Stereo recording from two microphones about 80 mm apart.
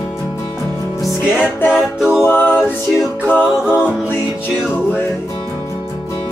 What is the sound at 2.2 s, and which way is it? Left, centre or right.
Music, left.